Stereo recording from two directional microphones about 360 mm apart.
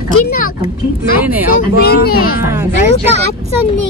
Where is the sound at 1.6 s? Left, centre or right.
Left.